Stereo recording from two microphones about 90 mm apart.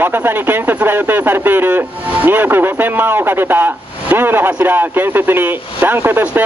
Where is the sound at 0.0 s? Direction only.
20° right (ahead or behind).